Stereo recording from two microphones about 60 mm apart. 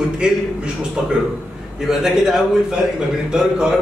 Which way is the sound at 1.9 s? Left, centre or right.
Centre.